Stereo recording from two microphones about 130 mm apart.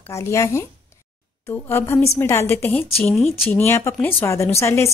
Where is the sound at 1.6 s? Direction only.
20° left (ahead or behind).